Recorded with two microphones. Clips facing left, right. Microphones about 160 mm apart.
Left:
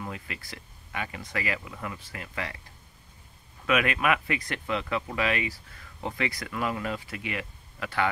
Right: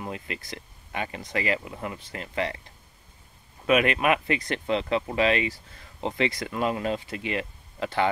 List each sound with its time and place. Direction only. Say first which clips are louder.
0.0 s speech: right 3 dB; 25° right (ahead or behind)
3.6 s speech: right 4 dB; 25° right (ahead or behind)